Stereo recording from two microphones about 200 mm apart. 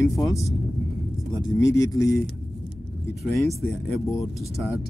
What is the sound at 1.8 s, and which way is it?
Speech, 15° left (ahead or behind).